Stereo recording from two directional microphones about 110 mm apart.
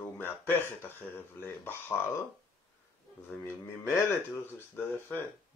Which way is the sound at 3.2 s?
20° left (ahead or behind).